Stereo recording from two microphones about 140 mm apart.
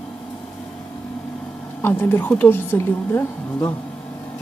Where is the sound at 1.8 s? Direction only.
15° left (ahead or behind).